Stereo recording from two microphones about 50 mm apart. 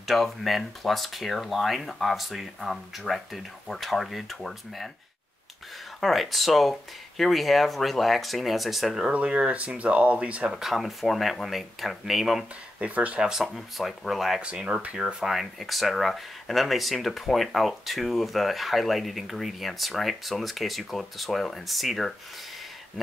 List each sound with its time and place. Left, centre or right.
0.0 s speech: centre
5.9 s speech: centre
9.1 s speech: right
10.5 s speech: centre
12.8 s speech: right
13.2 s speech: centre
14.4 s speech: right
15.2 s speech: centre